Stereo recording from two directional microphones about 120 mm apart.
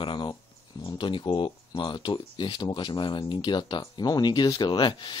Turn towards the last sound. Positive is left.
turn(degrees=40)  # may be behind; listen again after turning